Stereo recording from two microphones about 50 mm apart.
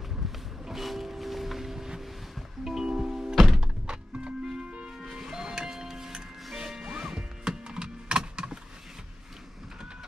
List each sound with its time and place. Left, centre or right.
0.7 s vehicle: centre
3.5 s music: centre
4.9 s music: centre